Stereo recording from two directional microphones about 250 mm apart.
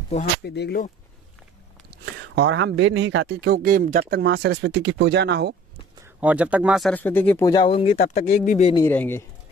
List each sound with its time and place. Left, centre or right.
0.1 s speech: left
2.1 s speech: right
6.0 s speech: centre; by 8.8 s left
8.8 s speech: centre